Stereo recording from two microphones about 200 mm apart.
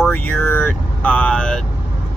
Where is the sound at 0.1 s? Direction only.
10° left (ahead or behind).